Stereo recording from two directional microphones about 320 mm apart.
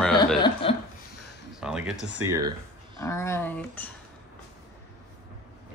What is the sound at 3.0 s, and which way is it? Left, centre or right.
Speech, centre.